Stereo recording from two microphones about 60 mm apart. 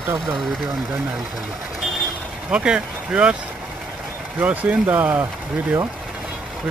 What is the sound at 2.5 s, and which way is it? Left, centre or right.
Speech, centre.